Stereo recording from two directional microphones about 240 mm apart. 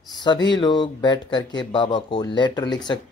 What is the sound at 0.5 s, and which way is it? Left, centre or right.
Speech, centre.